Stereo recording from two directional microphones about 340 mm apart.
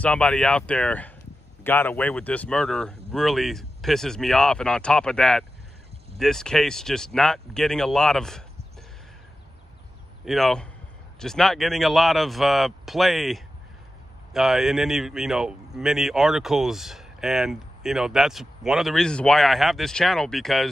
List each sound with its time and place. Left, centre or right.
0.0 s a man's voice: centre
10.2 s a man's voice: centre